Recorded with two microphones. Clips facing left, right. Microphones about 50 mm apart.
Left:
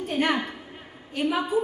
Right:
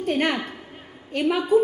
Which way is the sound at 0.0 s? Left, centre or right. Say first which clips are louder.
Right 2 dB; right.